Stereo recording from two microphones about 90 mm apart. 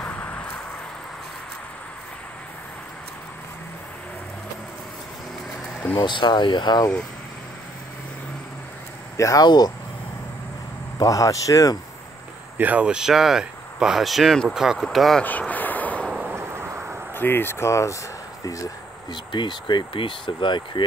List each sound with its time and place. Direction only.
0.0 s a sound: 20° left (ahead or behind)
5.9 s speech: 55° left (ahead or behind)
9.1 s speech: 40° left (ahead or behind)
11.0 s speech: 40° left (ahead or behind)
12.5 s speech: 15° right (ahead or behind); by 15.2 s centre (ahead or behind)
15.2 s a sound: 20° left (ahead or behind)
16.3 s a sound: 30° right (ahead or behind)
17.1 s speech: 25° left (ahead or behind); by 18.7 s 40° left (ahead or behind)
19.0 s speech: 60° left (ahead or behind)